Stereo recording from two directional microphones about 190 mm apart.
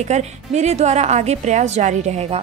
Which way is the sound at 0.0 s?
35° right (ahead or behind).